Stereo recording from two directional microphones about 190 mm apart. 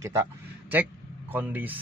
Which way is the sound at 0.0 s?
10° right (ahead or behind).